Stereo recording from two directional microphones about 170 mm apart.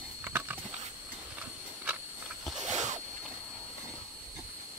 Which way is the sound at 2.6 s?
45° right (ahead or behind).